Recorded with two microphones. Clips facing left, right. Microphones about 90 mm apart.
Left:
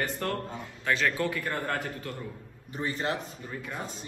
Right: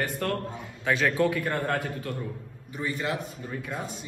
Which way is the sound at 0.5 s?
10° right (ahead or behind).